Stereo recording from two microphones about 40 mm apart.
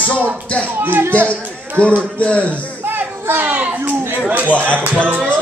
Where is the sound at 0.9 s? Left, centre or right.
Right.